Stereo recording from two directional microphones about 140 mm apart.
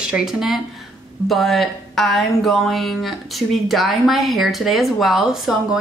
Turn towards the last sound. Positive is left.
turn(degrees=0)  # may be behind; listen again after turning